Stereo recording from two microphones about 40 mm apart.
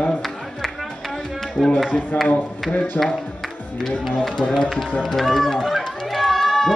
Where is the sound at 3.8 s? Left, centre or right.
Centre.